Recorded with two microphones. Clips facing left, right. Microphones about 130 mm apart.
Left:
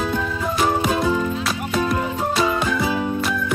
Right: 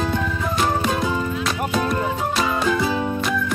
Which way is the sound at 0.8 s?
5° left (ahead or behind).